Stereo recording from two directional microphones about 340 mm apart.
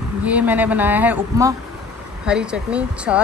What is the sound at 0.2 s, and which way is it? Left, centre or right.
Speech, centre.